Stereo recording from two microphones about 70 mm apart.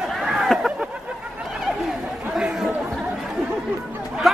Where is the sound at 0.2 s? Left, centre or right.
Centre.